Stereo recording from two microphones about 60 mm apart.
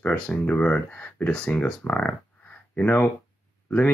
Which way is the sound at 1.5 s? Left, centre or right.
Left.